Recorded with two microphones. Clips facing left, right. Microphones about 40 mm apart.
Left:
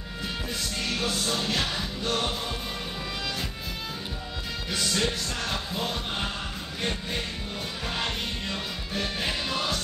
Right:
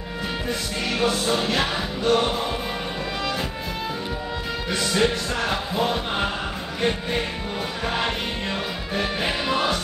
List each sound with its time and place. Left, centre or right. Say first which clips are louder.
0.5 s music: right 5 dB; centre
4.6 s music: right 6 dB; centre